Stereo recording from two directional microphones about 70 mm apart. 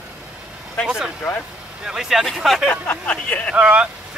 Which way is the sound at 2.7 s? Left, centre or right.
Left.